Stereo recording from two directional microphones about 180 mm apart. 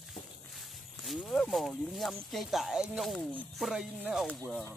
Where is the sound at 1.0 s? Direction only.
Centre (ahead or behind).